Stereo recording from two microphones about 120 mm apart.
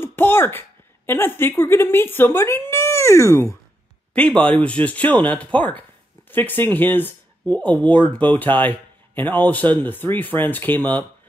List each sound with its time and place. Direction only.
0.0 s a woman's voice: 15° left (ahead or behind)
4.1 s speech: 10° left (ahead or behind)